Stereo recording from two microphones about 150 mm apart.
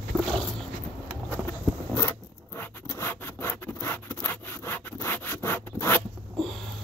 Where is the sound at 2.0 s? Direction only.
20° left (ahead or behind).